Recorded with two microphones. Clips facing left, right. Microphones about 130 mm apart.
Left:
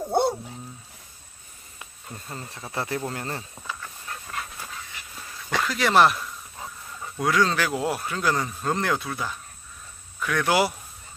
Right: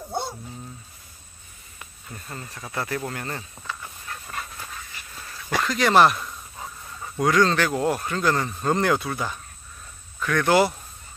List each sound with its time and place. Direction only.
0.1 s dog: 55° left (ahead or behind)
2.0 s speech: 25° left (ahead or behind)
5.6 s speech: 5° left (ahead or behind)